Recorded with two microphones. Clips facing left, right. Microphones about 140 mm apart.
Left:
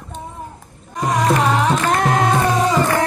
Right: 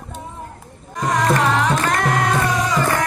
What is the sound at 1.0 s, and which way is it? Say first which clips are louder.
Music: left 1 dB; 20° left (ahead or behind).